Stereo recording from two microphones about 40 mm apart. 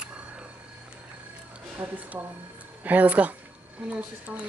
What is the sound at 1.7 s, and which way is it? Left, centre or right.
Speech, right.